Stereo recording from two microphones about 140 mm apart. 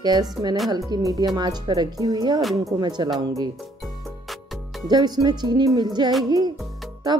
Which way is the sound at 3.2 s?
30° right (ahead or behind).